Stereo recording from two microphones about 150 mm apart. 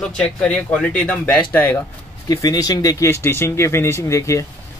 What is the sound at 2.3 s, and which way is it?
Speech, 25° left (ahead or behind).